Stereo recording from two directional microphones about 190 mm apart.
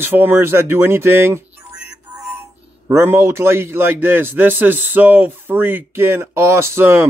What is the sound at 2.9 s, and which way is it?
A man's voice, 10° right (ahead or behind).